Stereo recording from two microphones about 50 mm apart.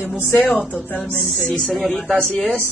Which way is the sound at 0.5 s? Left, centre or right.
Left.